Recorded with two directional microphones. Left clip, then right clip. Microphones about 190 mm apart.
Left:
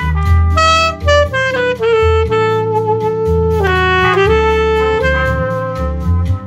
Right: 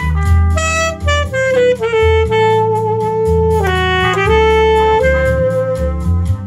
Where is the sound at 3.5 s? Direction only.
15° right (ahead or behind).